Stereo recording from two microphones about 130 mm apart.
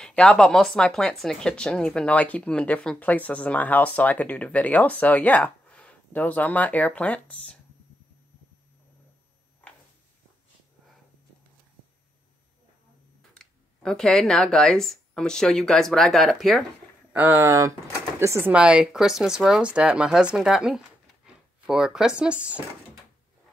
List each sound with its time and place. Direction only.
0.0 s speech: 5° left (ahead or behind)
13.3 s speech: 5° left (ahead or behind)
17.1 s speech: 15° right (ahead or behind)
18.5 s speech: 10° right (ahead or behind)